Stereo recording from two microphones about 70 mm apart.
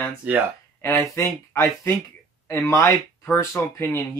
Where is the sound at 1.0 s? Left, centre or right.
Left.